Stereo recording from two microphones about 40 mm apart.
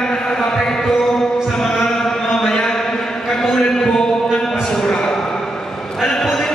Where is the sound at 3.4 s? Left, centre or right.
Centre.